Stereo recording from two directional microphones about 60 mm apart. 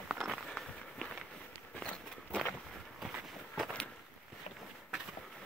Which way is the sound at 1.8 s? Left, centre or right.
Centre.